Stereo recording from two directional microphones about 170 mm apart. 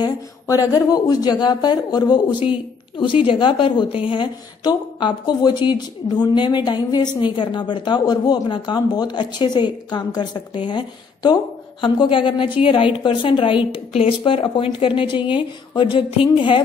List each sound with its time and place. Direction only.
0.0 s a woman's voice: 20° left (ahead or behind)